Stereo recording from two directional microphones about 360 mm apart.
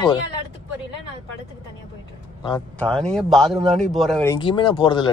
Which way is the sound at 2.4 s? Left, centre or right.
Centre.